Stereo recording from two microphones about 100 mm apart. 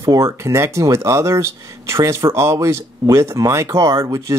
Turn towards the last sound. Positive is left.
turn(degrees=-40)  # may be behind; listen again after turning